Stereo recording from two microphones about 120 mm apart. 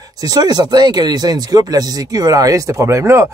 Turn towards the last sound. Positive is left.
turn(degrees=-25)  # may be behind; listen again after turning